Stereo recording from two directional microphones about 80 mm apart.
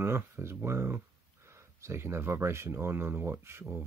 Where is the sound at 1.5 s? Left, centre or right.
Right.